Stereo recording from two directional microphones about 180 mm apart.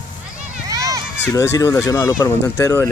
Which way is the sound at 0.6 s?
20° right (ahead or behind).